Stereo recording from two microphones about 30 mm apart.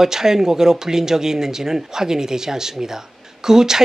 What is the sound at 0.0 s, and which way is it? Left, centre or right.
Speech, centre.